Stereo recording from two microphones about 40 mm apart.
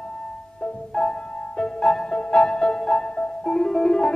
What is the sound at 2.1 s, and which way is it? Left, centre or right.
Music, left.